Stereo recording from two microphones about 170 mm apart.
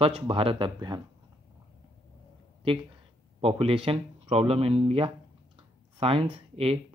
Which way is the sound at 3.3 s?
35° right (ahead or behind).